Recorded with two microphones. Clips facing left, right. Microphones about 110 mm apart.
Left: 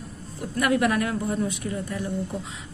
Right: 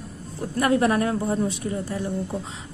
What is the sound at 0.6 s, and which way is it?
A woman's voice, 30° right (ahead or behind).